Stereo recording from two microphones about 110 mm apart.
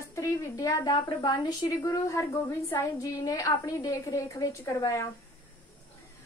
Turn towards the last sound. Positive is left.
turn(degrees=30)  # may be behind; listen again after turning